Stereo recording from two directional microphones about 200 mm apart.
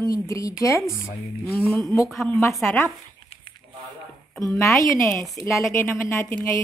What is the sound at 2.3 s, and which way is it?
Speech, 15° left (ahead or behind).